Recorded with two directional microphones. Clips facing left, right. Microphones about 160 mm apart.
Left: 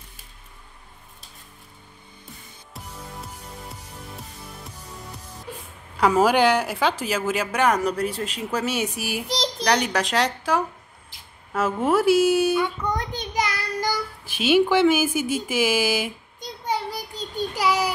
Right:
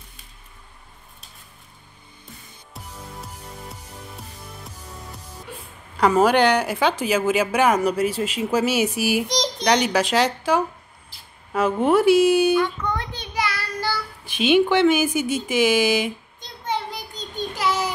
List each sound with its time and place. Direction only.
4.2 s music: centre (ahead or behind)
5.9 s a woman's voice: 5° left (ahead or behind)
12.9 s a sound: 40° left (ahead or behind)
13.4 s a child's voice: 15° left (ahead or behind)
17.4 s child singing: 10° left (ahead or behind)